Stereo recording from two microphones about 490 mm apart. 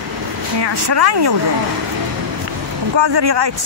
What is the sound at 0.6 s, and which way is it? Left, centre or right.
Speech, right.